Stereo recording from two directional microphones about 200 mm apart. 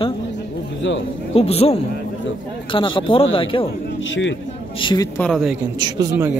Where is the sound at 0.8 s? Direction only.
65° left (ahead or behind).